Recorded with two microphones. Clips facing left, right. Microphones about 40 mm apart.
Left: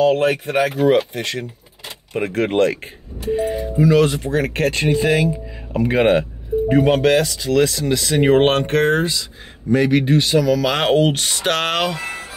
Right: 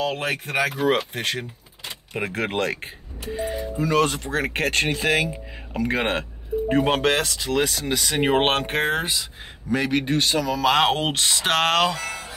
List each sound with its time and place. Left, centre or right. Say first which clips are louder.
0.0 s speech: left 10 dB; centre
0.8 s speech: left 6 dB; centre
2.1 s speech: left 7 dB; centre
3.3 s speech: left 8 dB; left
3.9 s speech: left 3 dB; centre
5.9 s speech: left 11 dB; centre
6.9 s speech: left 6 dB; centre
7.5 s speech: left 6 dB; right
9.7 s speech: left 7 dB; centre
11.9 s speech: left 3 dB; left